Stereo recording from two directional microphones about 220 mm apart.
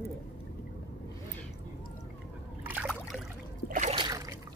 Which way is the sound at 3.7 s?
30° right (ahead or behind).